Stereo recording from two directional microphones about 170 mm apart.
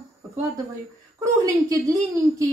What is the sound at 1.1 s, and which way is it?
A woman's voice, 20° right (ahead or behind).